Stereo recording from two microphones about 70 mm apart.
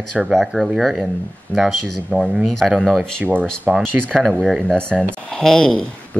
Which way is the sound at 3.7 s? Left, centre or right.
Centre.